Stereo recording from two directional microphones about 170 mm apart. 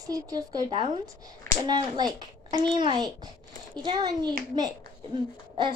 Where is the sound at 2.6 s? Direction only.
25° right (ahead or behind).